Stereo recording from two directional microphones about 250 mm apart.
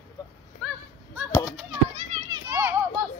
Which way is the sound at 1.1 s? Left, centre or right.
Centre.